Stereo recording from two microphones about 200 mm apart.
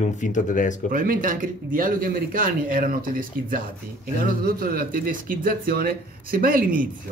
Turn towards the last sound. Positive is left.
turn(degrees=-45)  # may be behind; listen again after turning